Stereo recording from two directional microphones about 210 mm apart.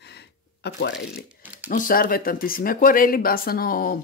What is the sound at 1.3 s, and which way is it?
Crumpling, 5° right (ahead or behind).